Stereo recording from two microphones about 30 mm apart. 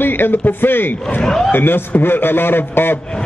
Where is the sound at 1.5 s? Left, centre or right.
Left.